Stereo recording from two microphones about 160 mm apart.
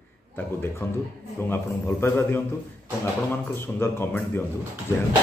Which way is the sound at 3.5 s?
15° left (ahead or behind).